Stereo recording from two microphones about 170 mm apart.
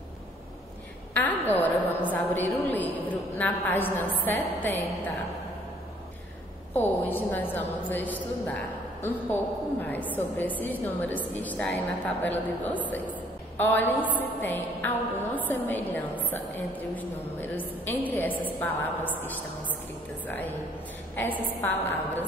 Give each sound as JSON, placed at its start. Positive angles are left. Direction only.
{"t": 1.1, "sound": "a woman's voice", "side_deg": 10}
{"t": 6.7, "sound": "a woman's voice", "side_deg": 10}
{"t": 21.2, "sound": "a woman's voice", "side_deg": 10}